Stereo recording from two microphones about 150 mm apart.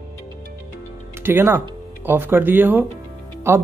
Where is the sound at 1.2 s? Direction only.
15° right (ahead or behind).